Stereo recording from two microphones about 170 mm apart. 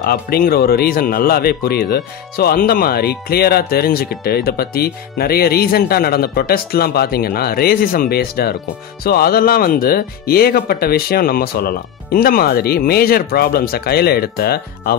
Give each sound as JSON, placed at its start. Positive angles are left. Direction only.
{"t": 0.0, "sound": "speech", "side_deg": 60}